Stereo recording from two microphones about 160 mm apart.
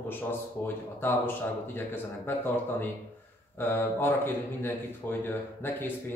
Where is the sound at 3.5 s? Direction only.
15° left (ahead or behind).